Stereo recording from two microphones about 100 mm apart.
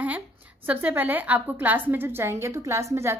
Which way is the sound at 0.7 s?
15° right (ahead or behind).